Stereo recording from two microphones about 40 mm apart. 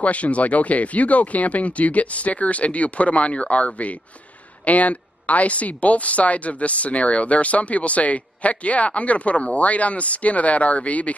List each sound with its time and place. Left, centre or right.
0.0 s speech: left